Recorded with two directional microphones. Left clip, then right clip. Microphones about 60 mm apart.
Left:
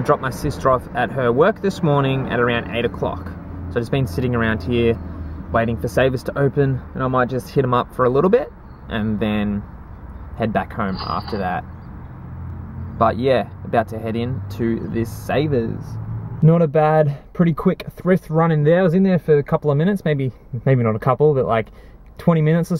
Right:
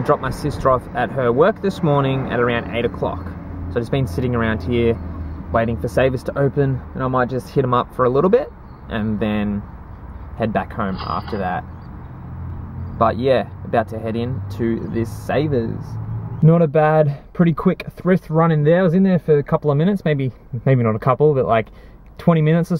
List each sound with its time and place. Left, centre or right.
0.0 s speech: centre
5.5 s speech: centre
7.5 s speech: centre
11.1 s speech: left
12.9 s speech: centre
15.5 s speech: left
16.3 s speech: centre